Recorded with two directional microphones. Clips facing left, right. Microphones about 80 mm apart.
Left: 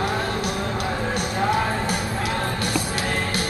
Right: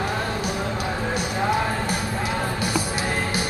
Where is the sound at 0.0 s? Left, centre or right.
Centre.